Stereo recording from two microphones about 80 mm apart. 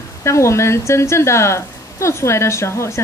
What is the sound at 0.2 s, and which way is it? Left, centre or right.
A woman's voice, left.